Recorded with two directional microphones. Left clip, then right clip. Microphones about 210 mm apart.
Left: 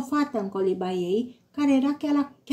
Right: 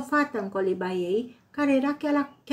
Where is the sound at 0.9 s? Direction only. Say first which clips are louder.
Left 1 dB; 15° left (ahead or behind).